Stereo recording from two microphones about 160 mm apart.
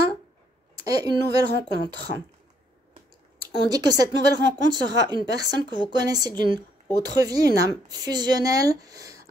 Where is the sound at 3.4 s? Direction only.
25° right (ahead or behind).